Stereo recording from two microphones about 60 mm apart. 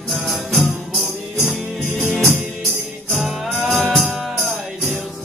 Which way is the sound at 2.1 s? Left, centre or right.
Centre.